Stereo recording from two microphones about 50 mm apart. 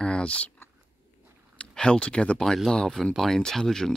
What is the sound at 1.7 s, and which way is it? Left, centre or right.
Speech, centre.